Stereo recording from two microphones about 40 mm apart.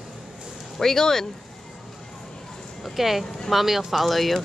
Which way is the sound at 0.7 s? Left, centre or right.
Centre.